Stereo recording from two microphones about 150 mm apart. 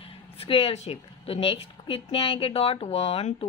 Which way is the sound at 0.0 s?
40° left (ahead or behind).